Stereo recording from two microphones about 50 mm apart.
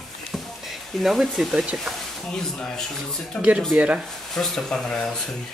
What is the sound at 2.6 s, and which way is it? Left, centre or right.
Speech, centre.